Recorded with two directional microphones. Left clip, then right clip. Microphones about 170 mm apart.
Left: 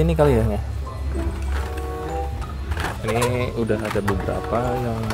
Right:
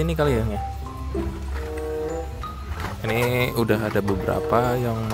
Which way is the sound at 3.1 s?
20° right (ahead or behind).